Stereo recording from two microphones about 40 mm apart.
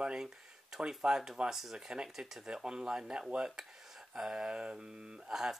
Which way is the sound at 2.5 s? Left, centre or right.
Centre.